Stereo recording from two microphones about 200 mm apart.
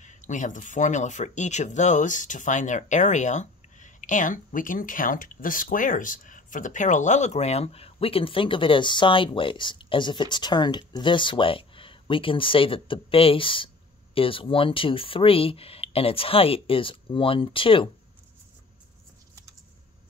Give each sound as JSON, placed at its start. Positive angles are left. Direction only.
{"t": 0.0, "sound": "speech", "side_deg": 40}